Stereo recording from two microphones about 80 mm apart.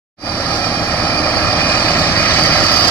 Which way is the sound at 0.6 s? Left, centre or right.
Centre.